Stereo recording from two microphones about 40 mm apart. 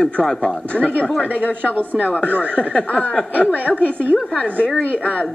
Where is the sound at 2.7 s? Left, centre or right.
Left.